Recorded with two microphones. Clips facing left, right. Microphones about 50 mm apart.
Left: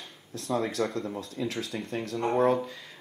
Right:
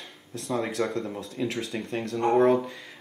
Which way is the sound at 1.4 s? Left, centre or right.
Right.